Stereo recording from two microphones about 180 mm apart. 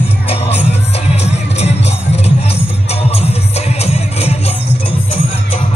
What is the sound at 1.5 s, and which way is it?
Music, 35° left (ahead or behind).